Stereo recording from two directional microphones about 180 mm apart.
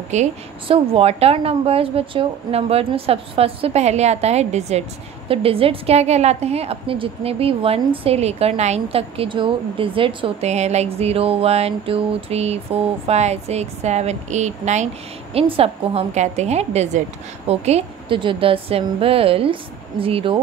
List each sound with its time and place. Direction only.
0.1 s a woman's voice: 35° right (ahead or behind)